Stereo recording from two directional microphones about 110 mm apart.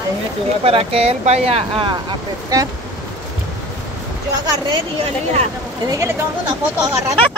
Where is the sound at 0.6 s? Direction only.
60° right (ahead or behind).